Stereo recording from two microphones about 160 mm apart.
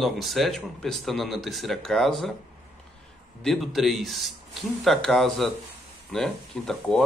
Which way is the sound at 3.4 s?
Centre (ahead or behind).